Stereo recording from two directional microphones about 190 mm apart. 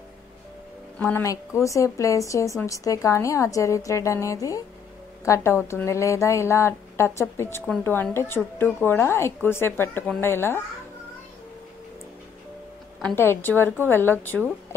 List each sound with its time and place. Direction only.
0.9 s speech: 5° left (ahead or behind)
1.6 s a woman's voice: 15° left (ahead or behind)
13.0 s a woman's voice: 10° left (ahead or behind)